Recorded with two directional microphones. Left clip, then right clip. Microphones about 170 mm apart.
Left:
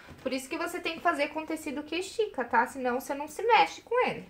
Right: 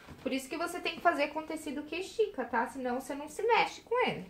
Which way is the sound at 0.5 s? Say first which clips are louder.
Left 2 dB; centre (ahead or behind).